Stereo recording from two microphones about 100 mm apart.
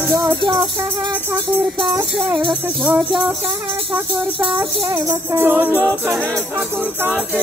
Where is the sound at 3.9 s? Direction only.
15° right (ahead or behind).